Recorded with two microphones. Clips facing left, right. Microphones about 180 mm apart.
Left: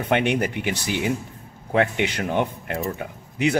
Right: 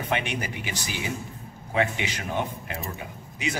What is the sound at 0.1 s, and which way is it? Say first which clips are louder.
Speech: left 9 dB; 60° left (ahead or behind).